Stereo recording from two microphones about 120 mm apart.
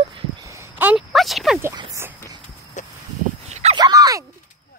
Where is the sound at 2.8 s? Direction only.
90° left.